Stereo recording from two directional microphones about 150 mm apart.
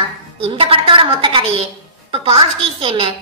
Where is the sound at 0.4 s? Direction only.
40° right (ahead or behind).